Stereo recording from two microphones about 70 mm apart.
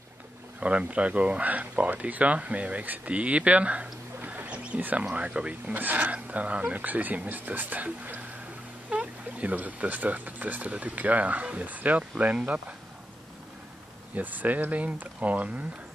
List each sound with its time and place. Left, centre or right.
0.6 s speech: centre
14.1 s speech: right